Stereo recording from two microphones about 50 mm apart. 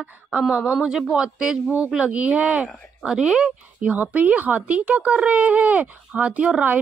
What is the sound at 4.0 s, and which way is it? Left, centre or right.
Speech, right.